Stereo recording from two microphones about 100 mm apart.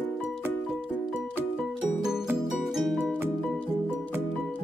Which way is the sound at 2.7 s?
Centre (ahead or behind).